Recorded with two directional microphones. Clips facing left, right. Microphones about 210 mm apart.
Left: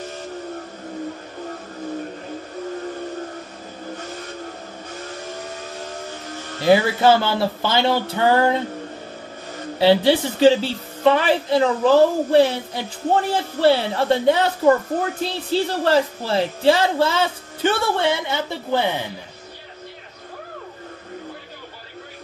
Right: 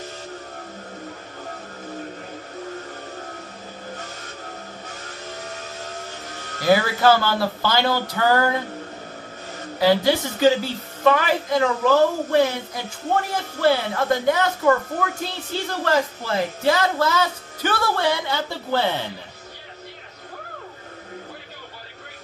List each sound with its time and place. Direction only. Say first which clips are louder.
6.6 s speech: left 2 dB; 25° left (ahead or behind)
9.8 s a woman's voice: left 3 dB; 30° left (ahead or behind)